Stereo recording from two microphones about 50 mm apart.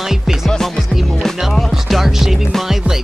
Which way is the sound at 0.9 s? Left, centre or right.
Centre.